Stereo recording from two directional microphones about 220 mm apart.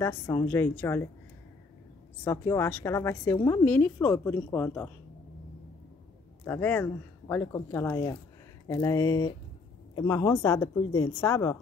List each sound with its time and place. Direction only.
0.0 s speech: 15° left (ahead or behind)
2.2 s speech: 15° left (ahead or behind)
6.4 s speech: 10° left (ahead or behind)